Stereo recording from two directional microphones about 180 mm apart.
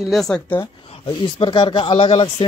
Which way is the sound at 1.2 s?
25° left (ahead or behind).